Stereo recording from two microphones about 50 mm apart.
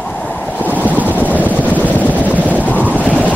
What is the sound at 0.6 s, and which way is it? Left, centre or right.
Wind noise, left.